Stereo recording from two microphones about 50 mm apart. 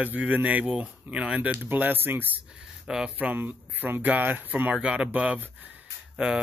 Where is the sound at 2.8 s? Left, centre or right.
Centre.